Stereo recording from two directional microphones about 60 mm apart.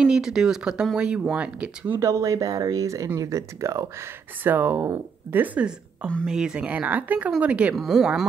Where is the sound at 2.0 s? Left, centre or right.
Right.